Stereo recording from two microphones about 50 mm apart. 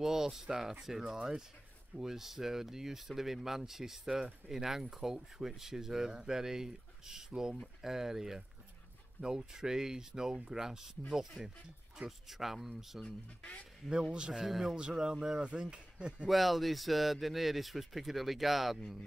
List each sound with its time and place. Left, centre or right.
0.0 s speech: centre
14.1 s speech: centre
14.4 s speech: centre; by 16.3 s right
16.3 s speech: centre